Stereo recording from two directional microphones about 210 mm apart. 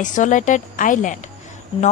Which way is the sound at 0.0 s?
35° left (ahead or behind).